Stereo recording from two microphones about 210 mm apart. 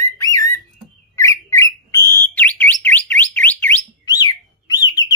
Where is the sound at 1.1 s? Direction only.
15° left (ahead or behind).